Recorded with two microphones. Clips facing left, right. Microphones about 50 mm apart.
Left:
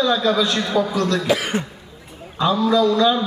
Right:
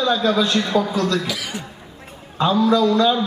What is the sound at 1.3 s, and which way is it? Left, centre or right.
Speech, left.